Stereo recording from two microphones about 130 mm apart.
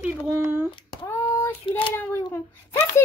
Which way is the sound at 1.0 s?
20° left (ahead or behind).